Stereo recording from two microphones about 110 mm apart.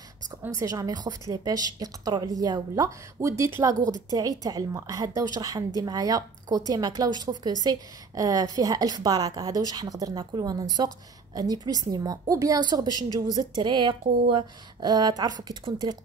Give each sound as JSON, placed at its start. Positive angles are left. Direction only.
{"t": 0.6, "sound": "a woman's voice", "side_deg": -35}